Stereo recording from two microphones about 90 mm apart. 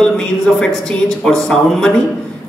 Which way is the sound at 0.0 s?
10° left (ahead or behind).